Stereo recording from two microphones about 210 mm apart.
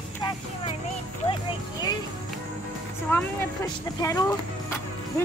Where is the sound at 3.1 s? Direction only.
15° left (ahead or behind).